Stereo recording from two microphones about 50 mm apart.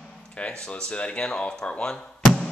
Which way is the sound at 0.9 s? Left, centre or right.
Left.